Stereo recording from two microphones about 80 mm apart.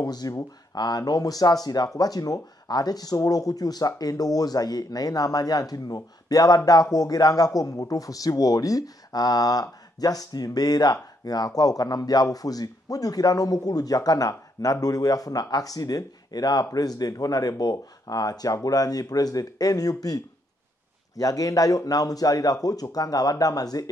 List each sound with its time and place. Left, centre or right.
0.0 s speech: left
21.2 s speech: left